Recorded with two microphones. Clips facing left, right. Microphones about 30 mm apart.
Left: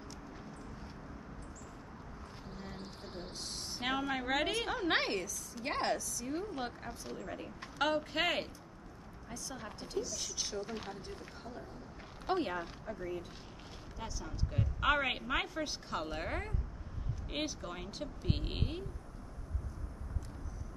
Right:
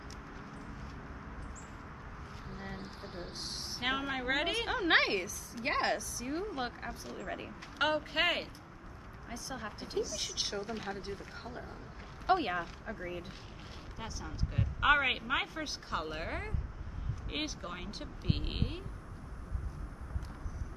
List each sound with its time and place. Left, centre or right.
2.6 s a sound: right
3.8 s a woman's voice: centre
7.8 s a woman's voice: centre
9.3 s speech: right
10.1 s speech: right
10.6 s a woman's voice: centre
10.9 s speech: right
12.3 s a woman's voice: right; by 18.9 s centre